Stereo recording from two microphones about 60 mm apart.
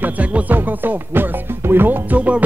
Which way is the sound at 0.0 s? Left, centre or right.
Right.